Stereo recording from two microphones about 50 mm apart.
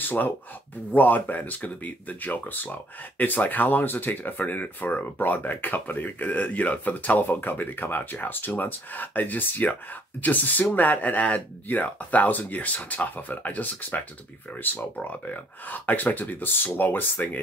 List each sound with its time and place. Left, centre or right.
0.0 s speech: left